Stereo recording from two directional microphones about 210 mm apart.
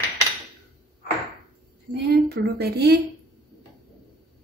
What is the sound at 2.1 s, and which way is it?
Speech, 50° right (ahead or behind).